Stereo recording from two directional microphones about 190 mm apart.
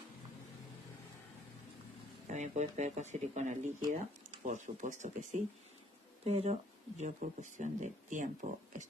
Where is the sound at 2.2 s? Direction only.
40° right (ahead or behind).